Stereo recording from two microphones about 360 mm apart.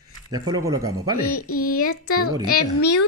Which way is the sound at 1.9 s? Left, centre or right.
Left.